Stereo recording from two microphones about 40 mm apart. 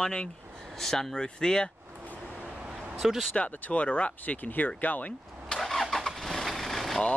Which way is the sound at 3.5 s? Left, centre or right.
Left.